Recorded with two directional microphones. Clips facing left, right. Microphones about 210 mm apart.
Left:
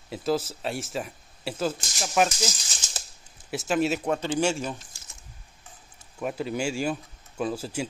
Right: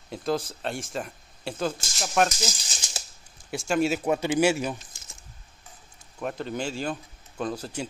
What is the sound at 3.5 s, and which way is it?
Speech, centre (ahead or behind).